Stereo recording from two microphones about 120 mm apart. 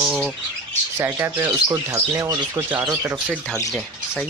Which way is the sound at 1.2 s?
25° right (ahead or behind).